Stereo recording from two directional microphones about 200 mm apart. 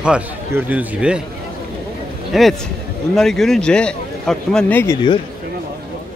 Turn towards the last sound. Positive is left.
turn(degrees=10)  # may be behind; listen again after turning